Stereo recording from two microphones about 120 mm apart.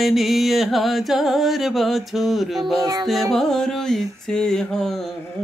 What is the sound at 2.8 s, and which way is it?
Music, 35° right (ahead or behind).